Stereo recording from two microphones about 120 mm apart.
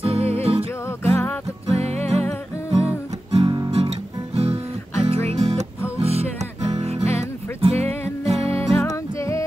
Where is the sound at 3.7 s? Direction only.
60° right (ahead or behind).